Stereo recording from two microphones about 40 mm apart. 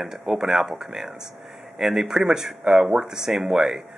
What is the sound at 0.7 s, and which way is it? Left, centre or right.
Speech, centre.